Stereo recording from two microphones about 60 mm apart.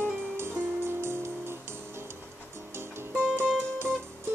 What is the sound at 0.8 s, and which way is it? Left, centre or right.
Music, right.